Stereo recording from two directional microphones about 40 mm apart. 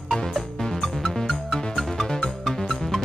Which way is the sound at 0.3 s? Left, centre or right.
Centre.